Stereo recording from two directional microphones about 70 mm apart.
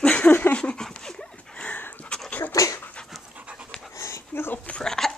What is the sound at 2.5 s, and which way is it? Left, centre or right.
Dog, left.